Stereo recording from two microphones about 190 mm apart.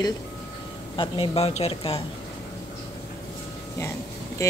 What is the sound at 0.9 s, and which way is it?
Speech, 25° left (ahead or behind).